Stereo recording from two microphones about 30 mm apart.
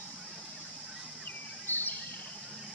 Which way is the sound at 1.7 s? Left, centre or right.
Left.